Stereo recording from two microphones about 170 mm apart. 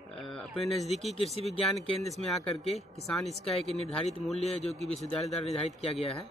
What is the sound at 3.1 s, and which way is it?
Speech, 5° left (ahead or behind).